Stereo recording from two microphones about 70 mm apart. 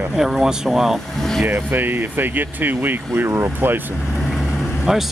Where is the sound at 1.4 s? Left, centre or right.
Right.